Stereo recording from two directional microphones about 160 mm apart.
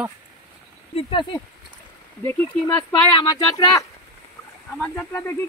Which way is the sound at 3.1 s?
25° left (ahead or behind).